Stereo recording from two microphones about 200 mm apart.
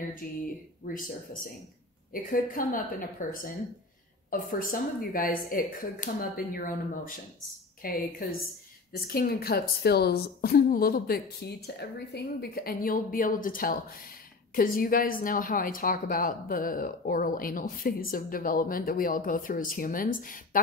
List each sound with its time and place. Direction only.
0.2 s speech: 45° left (ahead or behind)
2.3 s speech: 45° left (ahead or behind)